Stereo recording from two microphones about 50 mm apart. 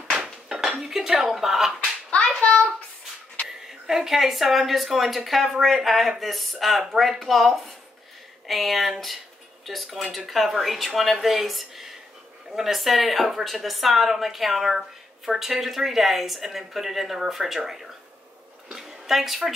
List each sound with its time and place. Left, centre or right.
0.7 s speech: centre
1.8 s slap: left
3.8 s speech: centre
18.7 s a sound: centre